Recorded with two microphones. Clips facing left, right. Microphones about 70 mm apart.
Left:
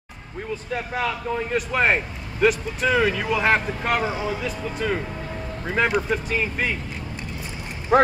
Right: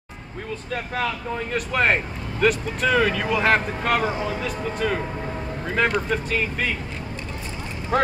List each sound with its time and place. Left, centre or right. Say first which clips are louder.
0.7 s speech: even; centre
4.1 s speech: even; centre
4.5 s speech: right 1 dB; centre
7.9 s speech: left 5 dB; left